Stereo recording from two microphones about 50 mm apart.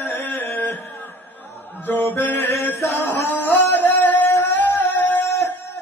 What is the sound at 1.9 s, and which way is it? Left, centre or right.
Mantra, left.